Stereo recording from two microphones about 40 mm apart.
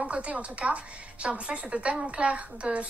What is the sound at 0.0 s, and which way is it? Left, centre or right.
A woman's voice, right.